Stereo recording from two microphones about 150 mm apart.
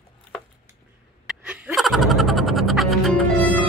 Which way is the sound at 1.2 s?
10° right (ahead or behind).